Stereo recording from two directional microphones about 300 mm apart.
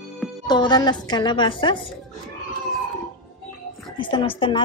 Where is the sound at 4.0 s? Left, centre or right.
Centre.